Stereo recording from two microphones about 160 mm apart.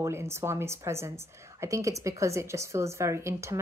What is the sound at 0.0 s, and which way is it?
A woman's voice, 15° right (ahead or behind).